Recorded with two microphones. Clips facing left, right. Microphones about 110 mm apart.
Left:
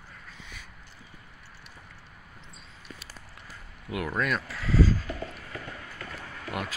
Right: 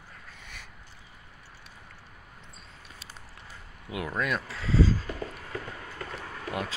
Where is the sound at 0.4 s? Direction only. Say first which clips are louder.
Left 1 dB; 65° right (ahead or behind).